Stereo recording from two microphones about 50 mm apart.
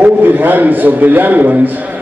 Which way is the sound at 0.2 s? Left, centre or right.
Right.